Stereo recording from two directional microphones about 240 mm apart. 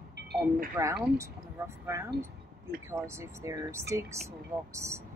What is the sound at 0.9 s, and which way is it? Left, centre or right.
Speech, centre.